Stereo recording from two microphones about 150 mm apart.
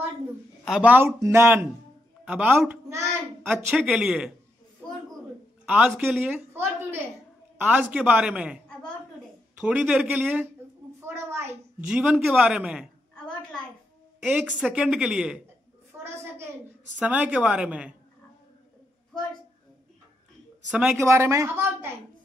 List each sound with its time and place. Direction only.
0.7 s a woman's voice: 5° right (ahead or behind)
2.9 s a sound: 20° right (ahead or behind)
3.7 s speech: 5° right (ahead or behind)
5.7 s a woman's voice: 5° right (ahead or behind)
9.6 s a woman's voice: 10° right (ahead or behind)
11.1 s a sound: 15° right (ahead or behind)
11.9 s a woman's voice: 5° right (ahead or behind)
13.1 s a sound: 5° left (ahead or behind)
14.2 s speech: 10° right (ahead or behind)
16.0 s a sound: 15° right (ahead or behind)
17.0 s a woman's voice: 10° right (ahead or behind)
21.0 s a woman's voice: 20° right (ahead or behind)